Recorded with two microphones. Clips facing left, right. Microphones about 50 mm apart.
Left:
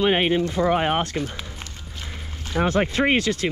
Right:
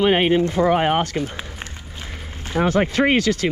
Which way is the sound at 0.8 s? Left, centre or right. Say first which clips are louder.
Right 3 dB; right.